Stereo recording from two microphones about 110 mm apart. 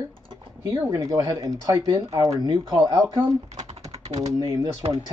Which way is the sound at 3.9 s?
80° right.